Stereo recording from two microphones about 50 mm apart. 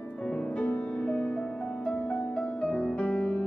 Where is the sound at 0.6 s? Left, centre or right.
Left.